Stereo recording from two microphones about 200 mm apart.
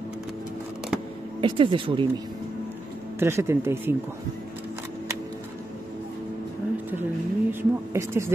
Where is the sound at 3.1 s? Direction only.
10° right (ahead or behind).